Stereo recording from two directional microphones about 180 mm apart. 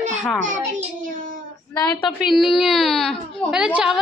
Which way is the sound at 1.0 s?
50° right (ahead or behind).